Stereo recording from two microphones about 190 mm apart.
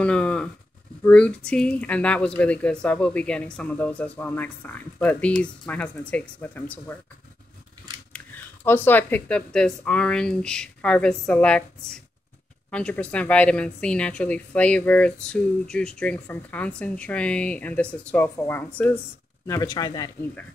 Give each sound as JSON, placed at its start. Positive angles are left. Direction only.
{"t": 0.0, "sound": "a sound", "side_deg": 5}
{"t": 1.0, "sound": "speech", "side_deg": 5}
{"t": 8.6, "sound": "speech", "side_deg": 10}